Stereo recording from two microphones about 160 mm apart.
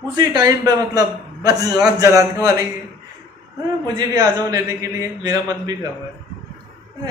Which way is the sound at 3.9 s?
25° right (ahead or behind).